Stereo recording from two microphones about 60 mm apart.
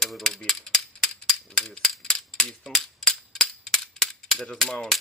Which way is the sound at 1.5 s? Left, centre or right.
Centre.